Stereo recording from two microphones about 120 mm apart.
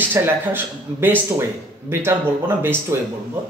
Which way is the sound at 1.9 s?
20° right (ahead or behind).